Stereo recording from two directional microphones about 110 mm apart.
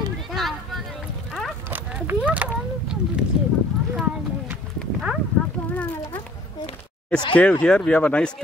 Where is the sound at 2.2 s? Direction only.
10° right (ahead or behind).